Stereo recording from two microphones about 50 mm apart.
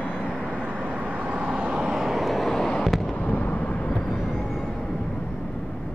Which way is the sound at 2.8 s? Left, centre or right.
Centre.